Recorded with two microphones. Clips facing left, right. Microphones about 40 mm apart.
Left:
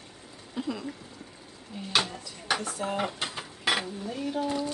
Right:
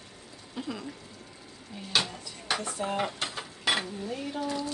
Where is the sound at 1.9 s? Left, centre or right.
Centre.